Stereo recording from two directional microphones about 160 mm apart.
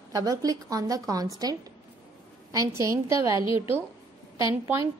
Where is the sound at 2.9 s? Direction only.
20° right (ahead or behind).